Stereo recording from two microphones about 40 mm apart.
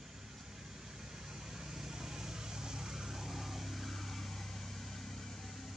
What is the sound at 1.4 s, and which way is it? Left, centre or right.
Vehicle, centre.